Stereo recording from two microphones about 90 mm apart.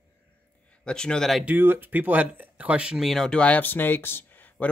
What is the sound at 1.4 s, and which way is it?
Speech, 20° right (ahead or behind).